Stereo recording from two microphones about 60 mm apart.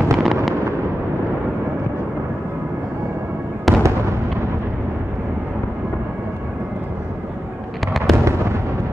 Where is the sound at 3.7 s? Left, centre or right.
Centre.